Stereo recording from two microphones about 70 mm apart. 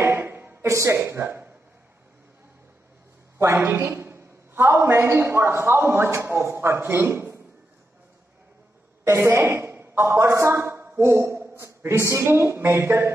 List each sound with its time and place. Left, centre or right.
0.0 s a sound: right
0.7 s speech: right
0.9 s a man's voice: right
3.6 s a man's voice: right
9.0 s a man's voice: right